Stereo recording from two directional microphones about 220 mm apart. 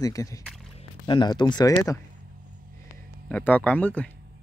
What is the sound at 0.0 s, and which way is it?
Speech, 15° left (ahead or behind).